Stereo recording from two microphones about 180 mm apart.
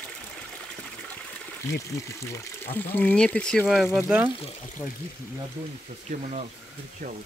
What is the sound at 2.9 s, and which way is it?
Speech, 5° left (ahead or behind).